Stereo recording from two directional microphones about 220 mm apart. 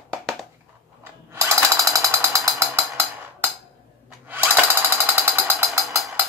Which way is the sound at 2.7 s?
10° right (ahead or behind).